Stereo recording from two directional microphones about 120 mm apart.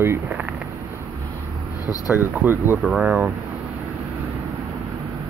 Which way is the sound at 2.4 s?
20° right (ahead or behind).